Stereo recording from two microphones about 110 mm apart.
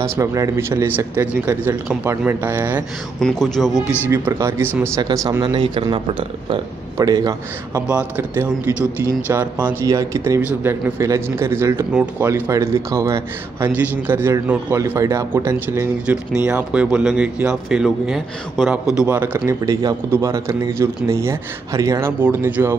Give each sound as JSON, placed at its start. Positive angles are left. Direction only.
{"t": 0.0, "sound": "a man's voice", "side_deg": -30}
{"t": 3.2, "sound": "speech", "side_deg": 5}
{"t": 4.1, "sound": "a man's voice", "side_deg": -25}
{"t": 7.0, "sound": "a man's voice", "side_deg": -35}
{"t": 8.2, "sound": "a man's voice", "side_deg": -20}
{"t": 9.8, "sound": "a man's voice", "side_deg": -30}
{"t": 16.4, "sound": "speech", "side_deg": -10}
{"t": 19.0, "sound": "a man's voice", "side_deg": -20}
{"t": 19.6, "sound": "a man's voice", "side_deg": -35}